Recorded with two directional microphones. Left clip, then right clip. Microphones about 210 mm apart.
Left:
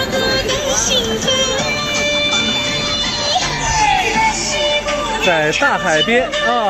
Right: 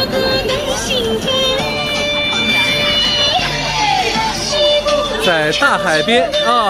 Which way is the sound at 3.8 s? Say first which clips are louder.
Left 2 dB; 60° right (ahead or behind).